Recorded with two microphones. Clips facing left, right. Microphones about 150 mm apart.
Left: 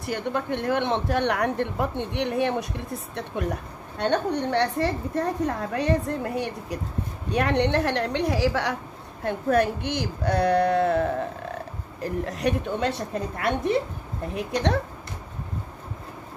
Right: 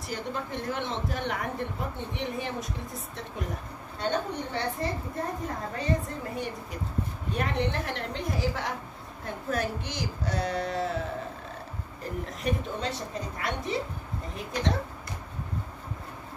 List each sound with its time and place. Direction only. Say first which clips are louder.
0.0 s speech: left 6 dB; 65° left (ahead or behind)
9.2 s speech: left 9 dB; 65° left (ahead or behind)
12.0 s speech: left 8 dB; 75° left (ahead or behind)
13.1 s speech: left 6 dB; 60° left (ahead or behind)
14.3 s speech: left 6 dB; 70° left (ahead or behind)